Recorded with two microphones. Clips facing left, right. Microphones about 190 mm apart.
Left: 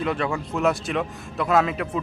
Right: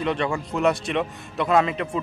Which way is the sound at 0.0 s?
Centre (ahead or behind).